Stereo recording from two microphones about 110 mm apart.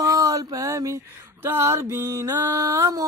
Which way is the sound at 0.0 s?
30° right (ahead or behind).